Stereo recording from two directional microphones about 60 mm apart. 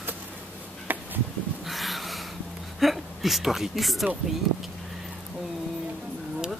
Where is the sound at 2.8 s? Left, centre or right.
Centre.